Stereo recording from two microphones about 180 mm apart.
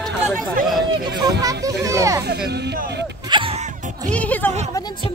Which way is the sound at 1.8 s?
20° right (ahead or behind).